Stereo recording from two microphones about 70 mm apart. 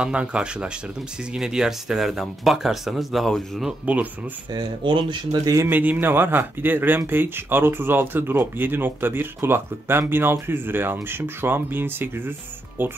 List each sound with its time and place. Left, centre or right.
0.0 s speech: centre
3.8 s speech: right
4.5 s speech: right
5.7 s speech: right